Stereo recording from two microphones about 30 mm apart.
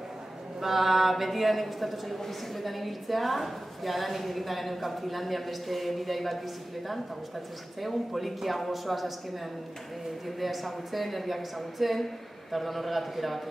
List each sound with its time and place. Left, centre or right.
0.6 s a man's voice: centre
7.8 s a man's voice: centre
10.2 s a man's voice: centre